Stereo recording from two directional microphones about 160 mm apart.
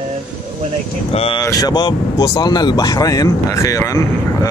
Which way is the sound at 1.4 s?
20° left (ahead or behind).